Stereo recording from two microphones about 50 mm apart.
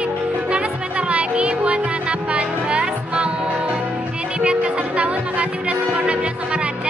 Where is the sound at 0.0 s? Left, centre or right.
Right.